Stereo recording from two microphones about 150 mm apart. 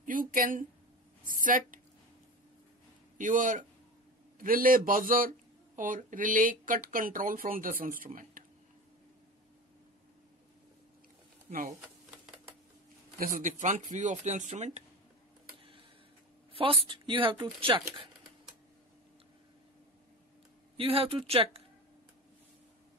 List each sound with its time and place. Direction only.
0.0 s a sound: 65° right (ahead or behind)
1.2 s a woman's voice: 65° right (ahead or behind)
3.2 s speech: 60° right (ahead or behind)
11.5 s speech: 60° right (ahead or behind)
13.2 s speech: 60° right (ahead or behind)
16.5 s a woman's voice: 35° right (ahead or behind)
20.7 s a woman's voice: 35° right (ahead or behind)